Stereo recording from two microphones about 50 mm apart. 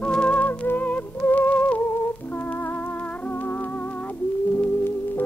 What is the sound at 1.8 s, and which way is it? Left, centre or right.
Music, left.